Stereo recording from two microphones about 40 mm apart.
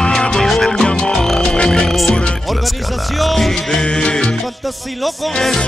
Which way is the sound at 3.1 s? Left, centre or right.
Centre.